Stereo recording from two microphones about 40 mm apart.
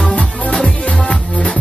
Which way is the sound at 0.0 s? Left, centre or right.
Left.